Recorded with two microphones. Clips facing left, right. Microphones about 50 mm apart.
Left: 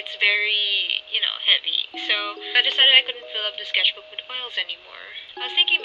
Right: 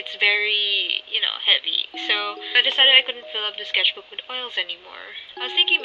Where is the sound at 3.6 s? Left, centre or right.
Centre.